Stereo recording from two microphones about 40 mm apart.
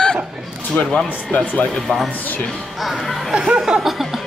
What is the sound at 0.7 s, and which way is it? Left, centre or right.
Speech, left.